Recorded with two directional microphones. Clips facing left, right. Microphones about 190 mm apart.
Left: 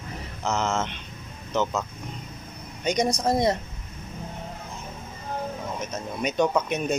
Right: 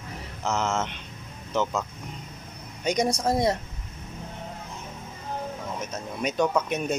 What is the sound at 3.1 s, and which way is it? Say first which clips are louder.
Speech: left 1 dB; 5° right (ahead or behind).